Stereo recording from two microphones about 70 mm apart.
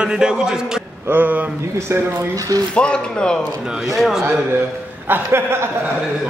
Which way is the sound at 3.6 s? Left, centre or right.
Centre.